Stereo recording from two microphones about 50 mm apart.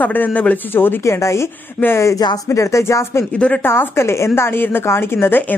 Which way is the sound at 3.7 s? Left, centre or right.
Left.